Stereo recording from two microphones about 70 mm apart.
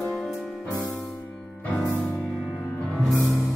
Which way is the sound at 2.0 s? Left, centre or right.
Centre.